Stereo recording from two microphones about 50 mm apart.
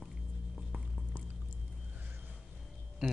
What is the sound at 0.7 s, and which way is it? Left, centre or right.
Patter, right.